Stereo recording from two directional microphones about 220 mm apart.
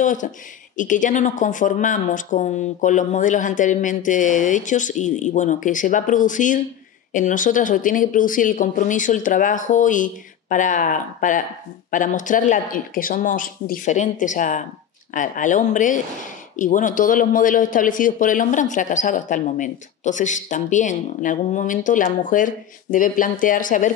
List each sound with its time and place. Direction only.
0.0 s speech: 35° left (ahead or behind)